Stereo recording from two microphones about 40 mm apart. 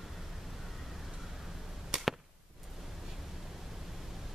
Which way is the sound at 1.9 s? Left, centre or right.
Centre.